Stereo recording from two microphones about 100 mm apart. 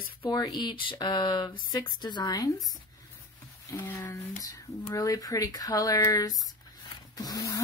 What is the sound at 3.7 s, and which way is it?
Speech, 30° left (ahead or behind).